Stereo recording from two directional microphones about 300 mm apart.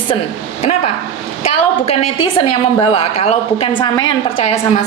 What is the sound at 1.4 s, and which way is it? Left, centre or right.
A woman's voice, centre.